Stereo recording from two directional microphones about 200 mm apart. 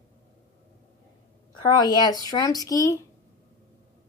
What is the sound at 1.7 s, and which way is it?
A woman's voice, 20° left (ahead or behind).